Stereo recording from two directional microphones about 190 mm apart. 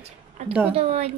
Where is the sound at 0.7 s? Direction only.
35° right (ahead or behind).